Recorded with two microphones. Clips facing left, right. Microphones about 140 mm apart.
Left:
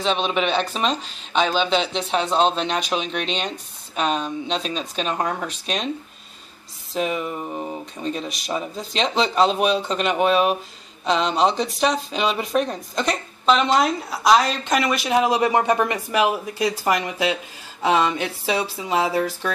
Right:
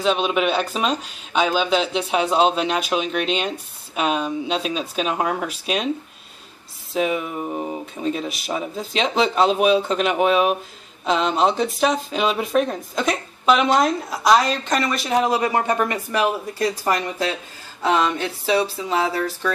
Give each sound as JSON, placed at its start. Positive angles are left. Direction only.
{"t": 0.0, "sound": "speech", "side_deg": -5}
{"t": 6.9, "sound": "speech", "side_deg": 0}
{"t": 15.3, "sound": "speech", "side_deg": 20}